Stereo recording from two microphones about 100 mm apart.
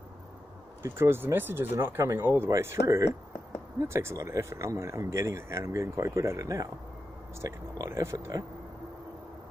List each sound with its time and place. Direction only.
0.8 s speech: 25° right (ahead or behind)